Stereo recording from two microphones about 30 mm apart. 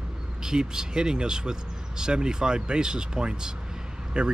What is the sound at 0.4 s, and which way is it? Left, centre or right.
Speech, right.